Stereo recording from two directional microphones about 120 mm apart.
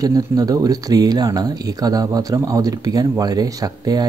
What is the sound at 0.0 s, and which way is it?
Speech, 30° right (ahead or behind).